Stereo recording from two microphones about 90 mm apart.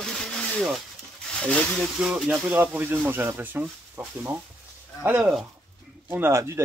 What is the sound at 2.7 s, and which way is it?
Speech, 20° right (ahead or behind).